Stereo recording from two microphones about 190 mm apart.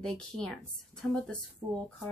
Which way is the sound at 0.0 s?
5° left (ahead or behind).